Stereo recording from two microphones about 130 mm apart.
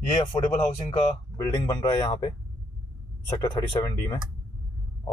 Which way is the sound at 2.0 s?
35° left (ahead or behind).